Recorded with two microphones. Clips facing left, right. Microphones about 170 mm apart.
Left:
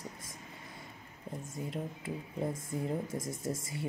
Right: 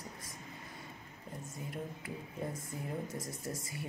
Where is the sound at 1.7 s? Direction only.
25° left (ahead or behind).